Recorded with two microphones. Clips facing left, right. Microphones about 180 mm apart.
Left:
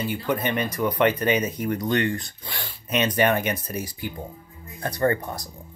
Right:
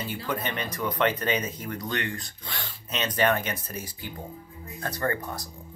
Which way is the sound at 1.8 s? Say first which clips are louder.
Left 7 dB; 35° left (ahead or behind).